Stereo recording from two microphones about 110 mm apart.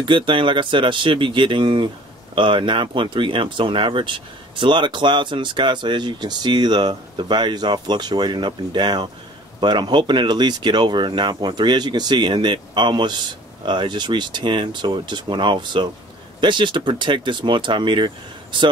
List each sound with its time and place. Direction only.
0.0 s speech: 45° right (ahead or behind)